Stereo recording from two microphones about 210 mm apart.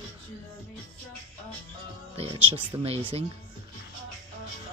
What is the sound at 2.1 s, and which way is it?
Speech, 25° right (ahead or behind).